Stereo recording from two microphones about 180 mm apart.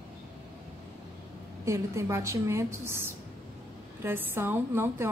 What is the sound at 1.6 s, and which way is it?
A woman's voice, 15° right (ahead or behind).